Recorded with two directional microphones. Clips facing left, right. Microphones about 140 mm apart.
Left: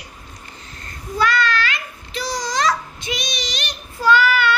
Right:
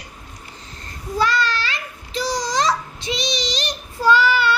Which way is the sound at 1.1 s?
35° right (ahead or behind).